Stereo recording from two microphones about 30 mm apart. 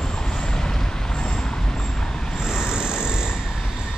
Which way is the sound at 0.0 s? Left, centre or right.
Left.